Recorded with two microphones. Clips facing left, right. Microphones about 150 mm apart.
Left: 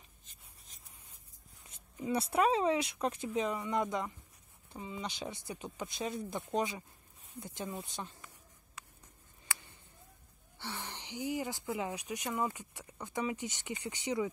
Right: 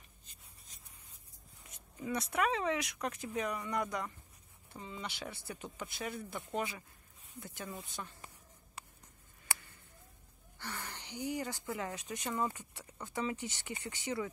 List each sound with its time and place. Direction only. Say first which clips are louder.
2.1 s speech: left 4 dB; 30° left (ahead or behind)
10.6 s speech: left 2 dB; 15° left (ahead or behind)